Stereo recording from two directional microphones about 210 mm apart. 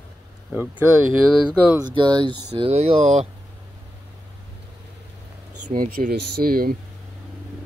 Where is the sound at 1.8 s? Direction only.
20° right (ahead or behind).